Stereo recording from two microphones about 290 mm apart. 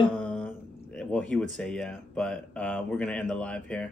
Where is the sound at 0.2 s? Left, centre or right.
Centre.